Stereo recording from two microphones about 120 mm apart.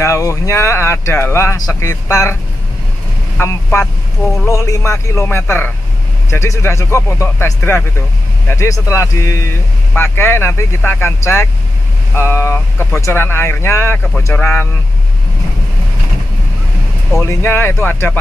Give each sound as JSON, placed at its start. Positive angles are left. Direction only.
{"t": 0.0, "sound": "speech", "side_deg": 25}
{"t": 3.3, "sound": "speech", "side_deg": 25}
{"t": 17.2, "sound": "speech", "side_deg": 20}